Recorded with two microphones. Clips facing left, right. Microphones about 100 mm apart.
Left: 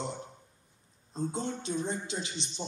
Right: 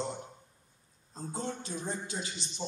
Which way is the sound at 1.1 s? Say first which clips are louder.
Left 4 dB; 25° left (ahead or behind).